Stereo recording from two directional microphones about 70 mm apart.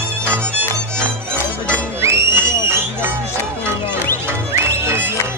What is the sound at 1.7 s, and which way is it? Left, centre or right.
Music, right.